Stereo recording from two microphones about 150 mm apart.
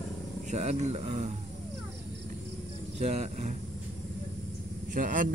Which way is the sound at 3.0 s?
45° right (ahead or behind).